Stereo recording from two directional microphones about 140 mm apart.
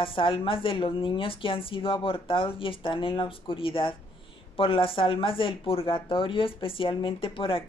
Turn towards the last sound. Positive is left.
turn(degrees=40)  # may be behind; listen again after turning